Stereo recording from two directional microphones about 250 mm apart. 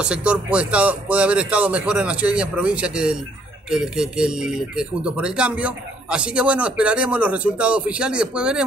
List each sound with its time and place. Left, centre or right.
0.0 s speech: centre